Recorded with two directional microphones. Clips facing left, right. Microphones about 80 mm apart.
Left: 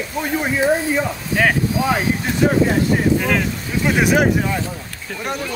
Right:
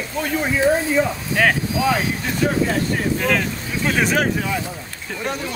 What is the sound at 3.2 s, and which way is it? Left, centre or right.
Speech, centre.